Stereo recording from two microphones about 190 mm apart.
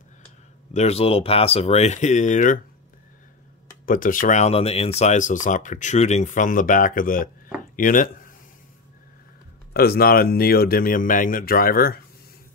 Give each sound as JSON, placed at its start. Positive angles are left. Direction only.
{"t": 0.7, "sound": "speech", "side_deg": 35}
{"t": 3.8, "sound": "speech", "side_deg": 45}
{"t": 9.8, "sound": "speech", "side_deg": 55}